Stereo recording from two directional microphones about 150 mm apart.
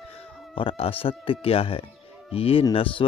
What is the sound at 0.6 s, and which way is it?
Speech, 35° left (ahead or behind).